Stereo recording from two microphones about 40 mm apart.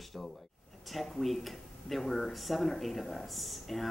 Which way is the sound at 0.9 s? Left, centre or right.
Centre.